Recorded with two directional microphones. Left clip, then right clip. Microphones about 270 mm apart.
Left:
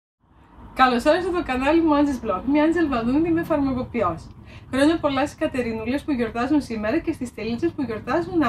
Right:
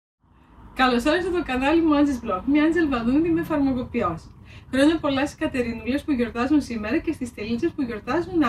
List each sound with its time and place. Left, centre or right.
0.7 s speech: centre